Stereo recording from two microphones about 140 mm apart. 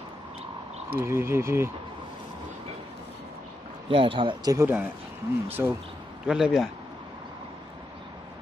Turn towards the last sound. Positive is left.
turn(degrees=0)  # may be behind; listen again after turning